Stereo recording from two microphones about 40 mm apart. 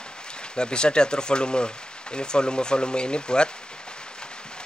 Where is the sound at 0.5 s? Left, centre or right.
Left.